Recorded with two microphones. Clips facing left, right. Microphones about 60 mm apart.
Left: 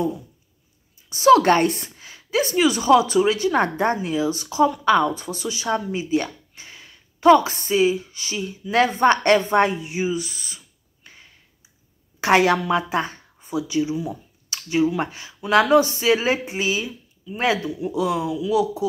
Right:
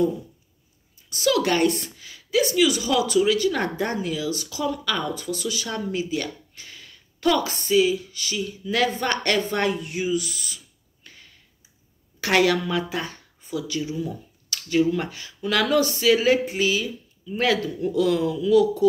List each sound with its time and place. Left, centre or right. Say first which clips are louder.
1.1 s a woman's voice: left 8 dB; left
11.1 s a sound: left 1 dB; left
12.2 s a woman's voice: left 3 dB; left
17.6 s speech: right 1 dB; centre